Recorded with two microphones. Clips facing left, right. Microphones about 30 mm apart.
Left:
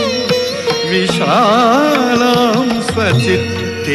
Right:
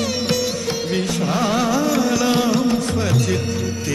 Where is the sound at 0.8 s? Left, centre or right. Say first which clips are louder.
Left 9 dB; left.